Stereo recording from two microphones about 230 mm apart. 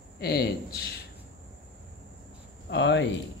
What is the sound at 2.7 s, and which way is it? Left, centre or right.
Speech, left.